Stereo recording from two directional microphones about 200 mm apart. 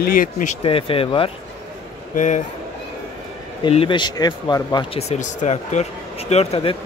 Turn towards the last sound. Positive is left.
turn(degrees=30)  # may be behind; listen again after turning